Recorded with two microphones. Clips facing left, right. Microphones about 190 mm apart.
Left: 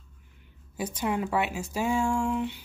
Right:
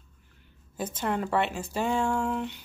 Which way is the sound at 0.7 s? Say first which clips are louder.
Left 1 dB; 10° left (ahead or behind).